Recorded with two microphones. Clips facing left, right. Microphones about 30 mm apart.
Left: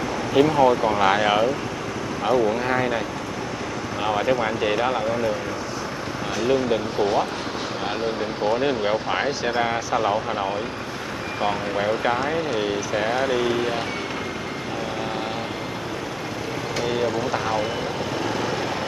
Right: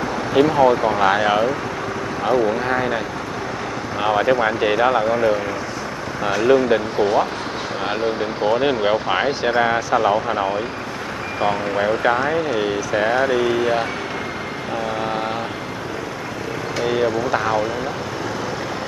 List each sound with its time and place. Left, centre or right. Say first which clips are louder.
0.3 s speech: right 2 dB; centre
4.0 s speech: right 5 dB; centre
8.2 s speech: right 3 dB; centre
16.8 s speech: right 5 dB; centre